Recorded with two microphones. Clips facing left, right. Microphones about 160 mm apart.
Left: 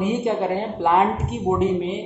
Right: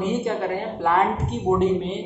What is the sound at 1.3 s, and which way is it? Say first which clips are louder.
Speech: even; 5° left (ahead or behind).